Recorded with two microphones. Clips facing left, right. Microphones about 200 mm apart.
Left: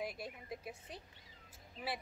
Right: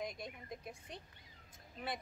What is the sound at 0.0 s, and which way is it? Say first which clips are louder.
A woman's voice: left 1 dB; 5° left (ahead or behind).